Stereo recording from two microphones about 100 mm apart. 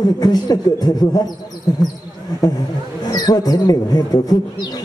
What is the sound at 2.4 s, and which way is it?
Speech, 35° left (ahead or behind).